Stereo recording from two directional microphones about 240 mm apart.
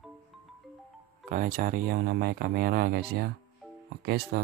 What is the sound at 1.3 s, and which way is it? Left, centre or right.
Speech, right.